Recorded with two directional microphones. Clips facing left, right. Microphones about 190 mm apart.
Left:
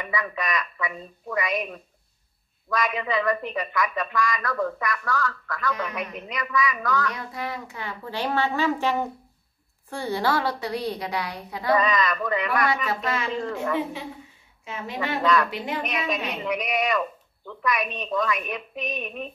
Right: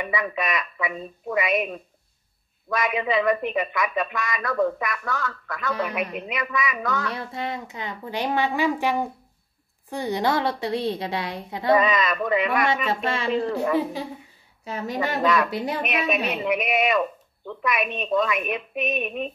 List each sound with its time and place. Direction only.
0.0 s a woman's voice: 20° right (ahead or behind)
6.1 s a woman's voice: 20° right (ahead or behind)
14.6 s a woman's voice: 40° right (ahead or behind)
15.2 s a woman's voice: 20° right (ahead or behind)
15.5 s a woman's voice: 40° right (ahead or behind)
15.8 s a woman's voice: 25° right (ahead or behind)